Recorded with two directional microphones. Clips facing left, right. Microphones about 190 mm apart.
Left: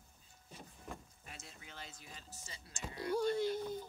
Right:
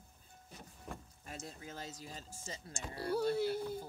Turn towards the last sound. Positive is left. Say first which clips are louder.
# right 1 dB
turn(degrees=-10)  # may be behind; listen again after turning